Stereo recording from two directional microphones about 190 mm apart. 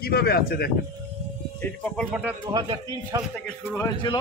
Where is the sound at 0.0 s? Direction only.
55° left (ahead or behind).